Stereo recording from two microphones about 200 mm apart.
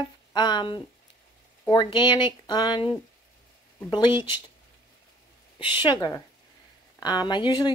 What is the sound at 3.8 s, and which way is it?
Speech, 20° left (ahead or behind).